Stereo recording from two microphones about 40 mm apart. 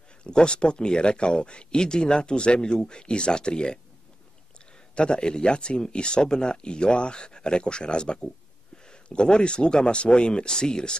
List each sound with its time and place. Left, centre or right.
0.2 s speech: left
4.9 s speech: left